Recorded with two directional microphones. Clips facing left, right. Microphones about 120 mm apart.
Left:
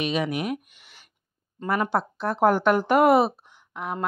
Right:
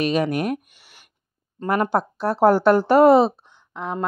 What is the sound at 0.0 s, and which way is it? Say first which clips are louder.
Speech: right 5 dB; 40° right (ahead or behind).